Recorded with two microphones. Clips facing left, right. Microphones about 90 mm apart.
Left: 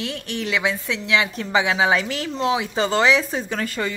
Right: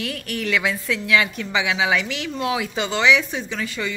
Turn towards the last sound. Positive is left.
turn(degrees=45)  # may be behind; listen again after turning